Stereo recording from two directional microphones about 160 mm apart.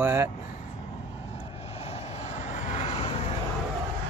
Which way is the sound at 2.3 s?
50° left (ahead or behind).